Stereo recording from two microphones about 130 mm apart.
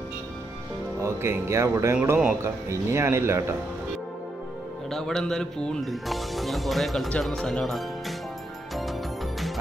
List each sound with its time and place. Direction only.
1.0 s a man's voice: 20° right (ahead or behind)
4.9 s speech: 5° left (ahead or behind)